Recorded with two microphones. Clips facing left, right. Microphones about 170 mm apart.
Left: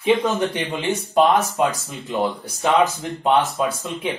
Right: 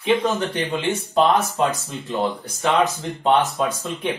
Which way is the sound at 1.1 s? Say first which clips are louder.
Left 2 dB; 15° left (ahead or behind).